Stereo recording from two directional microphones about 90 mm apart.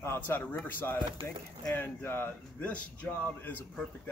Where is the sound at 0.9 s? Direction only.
60° right (ahead or behind).